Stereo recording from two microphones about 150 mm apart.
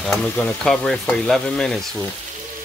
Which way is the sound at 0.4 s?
5° left (ahead or behind).